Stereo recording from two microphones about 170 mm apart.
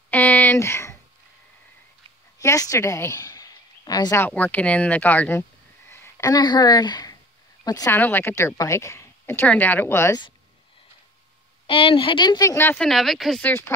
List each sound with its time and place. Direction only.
0.1 s a sound: 10° left (ahead or behind)
2.3 s a woman's voice: 20° left (ahead or behind)
4.2 s a woman's voice: 10° left (ahead or behind)
5.9 s a sound: 15° left (ahead or behind)
7.6 s a woman's voice: 20° left (ahead or behind)
11.6 s speech: 30° left (ahead or behind); by 12.8 s 15° left (ahead or behind)
12.8 s speech: centre (ahead or behind)
13.5 s a woman's voice: 15° left (ahead or behind)